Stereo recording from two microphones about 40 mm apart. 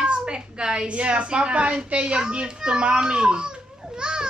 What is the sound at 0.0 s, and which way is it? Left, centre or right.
A woman's voice, right.